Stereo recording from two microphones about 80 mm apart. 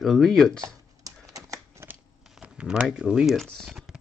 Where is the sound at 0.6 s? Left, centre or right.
Right.